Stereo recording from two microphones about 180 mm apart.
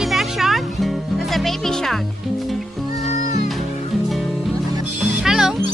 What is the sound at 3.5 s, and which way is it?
Music, centre (ahead or behind).